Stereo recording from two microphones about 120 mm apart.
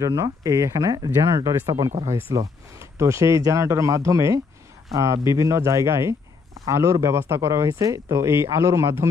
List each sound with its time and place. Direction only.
0.0 s speech: 30° right (ahead or behind)